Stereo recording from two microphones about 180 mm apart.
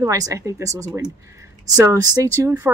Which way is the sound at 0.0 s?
20° right (ahead or behind).